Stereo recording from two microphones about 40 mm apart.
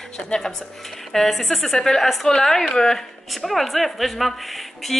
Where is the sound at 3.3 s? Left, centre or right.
Centre.